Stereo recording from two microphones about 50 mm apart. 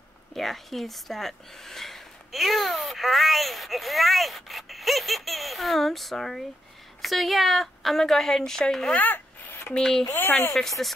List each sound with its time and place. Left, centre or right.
0.3 s speech: centre
9.0 s rub: left
9.8 s speech: centre